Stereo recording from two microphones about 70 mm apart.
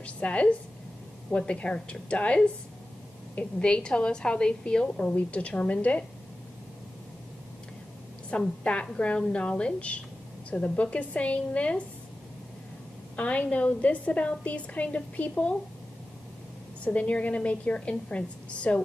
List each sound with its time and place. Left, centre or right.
0.0 s a woman's voice: centre
3.5 s a woman's voice: centre
8.3 s a woman's voice: centre
13.1 s a woman's voice: left
16.8 s a woman's voice: centre